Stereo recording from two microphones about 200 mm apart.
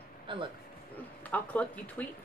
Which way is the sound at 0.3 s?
25° right (ahead or behind).